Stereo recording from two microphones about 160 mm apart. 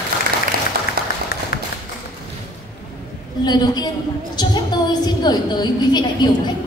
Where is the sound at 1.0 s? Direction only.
65° right (ahead or behind).